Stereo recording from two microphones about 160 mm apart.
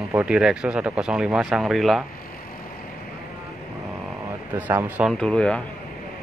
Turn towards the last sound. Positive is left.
turn(degrees=5)  # may be behind; listen again after turning